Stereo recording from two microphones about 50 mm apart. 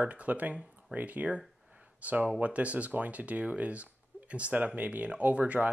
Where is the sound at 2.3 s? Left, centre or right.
Right.